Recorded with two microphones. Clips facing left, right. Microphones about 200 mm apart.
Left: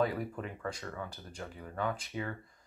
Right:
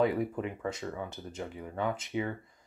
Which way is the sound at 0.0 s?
20° right (ahead or behind).